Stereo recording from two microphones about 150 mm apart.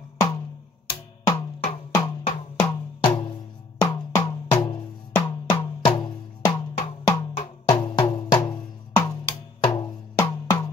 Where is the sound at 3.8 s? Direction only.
30° left (ahead or behind).